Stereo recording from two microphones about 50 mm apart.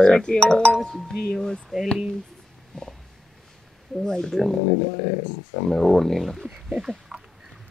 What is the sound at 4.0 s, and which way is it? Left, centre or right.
Speech, centre.